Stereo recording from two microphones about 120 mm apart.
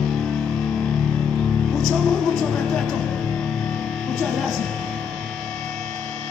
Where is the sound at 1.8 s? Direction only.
Centre (ahead or behind).